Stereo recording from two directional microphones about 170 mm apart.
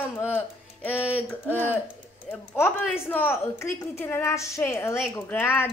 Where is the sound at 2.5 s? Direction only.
10° left (ahead or behind).